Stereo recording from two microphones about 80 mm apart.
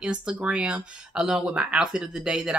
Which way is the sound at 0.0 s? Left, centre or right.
Centre.